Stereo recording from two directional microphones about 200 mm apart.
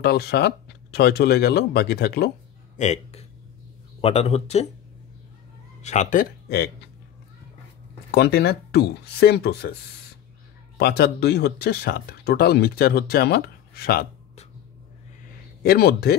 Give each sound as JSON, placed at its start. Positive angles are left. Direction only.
{"t": 0.0, "sound": "speech", "side_deg": 50}
{"t": 2.8, "sound": "speech", "side_deg": 35}
{"t": 5.8, "sound": "speech", "side_deg": 35}
{"t": 8.1, "sound": "speech", "side_deg": 50}
{"t": 10.8, "sound": "speech", "side_deg": 55}
{"t": 15.6, "sound": "speech", "side_deg": 50}